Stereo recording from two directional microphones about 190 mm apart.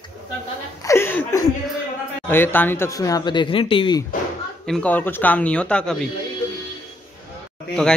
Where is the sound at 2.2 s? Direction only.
10° left (ahead or behind); by 4.0 s 25° left (ahead or behind).